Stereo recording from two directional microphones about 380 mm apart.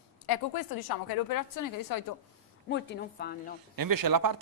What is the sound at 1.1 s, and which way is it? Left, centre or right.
Speech, left.